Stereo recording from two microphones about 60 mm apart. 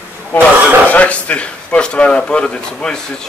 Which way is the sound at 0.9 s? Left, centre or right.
Left.